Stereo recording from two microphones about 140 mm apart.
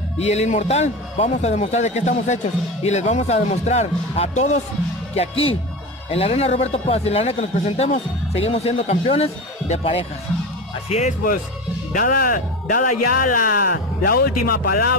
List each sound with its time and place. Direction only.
0.2 s a man's voice: 50° left (ahead or behind)
11.9 s speech: 85° left